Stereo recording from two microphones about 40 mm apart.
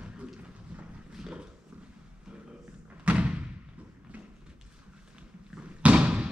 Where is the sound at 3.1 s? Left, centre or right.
Right.